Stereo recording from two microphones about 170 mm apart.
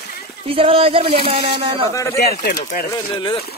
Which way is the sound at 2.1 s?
65° left (ahead or behind).